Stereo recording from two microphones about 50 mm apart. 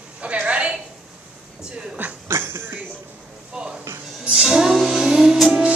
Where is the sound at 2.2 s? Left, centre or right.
Right.